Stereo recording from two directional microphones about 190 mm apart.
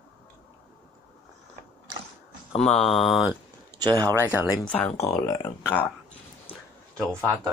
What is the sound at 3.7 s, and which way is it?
Speech, 20° right (ahead or behind).